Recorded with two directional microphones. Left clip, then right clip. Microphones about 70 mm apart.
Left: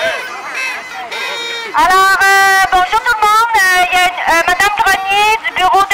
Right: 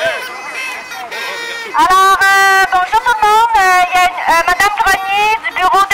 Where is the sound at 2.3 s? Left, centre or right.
Left.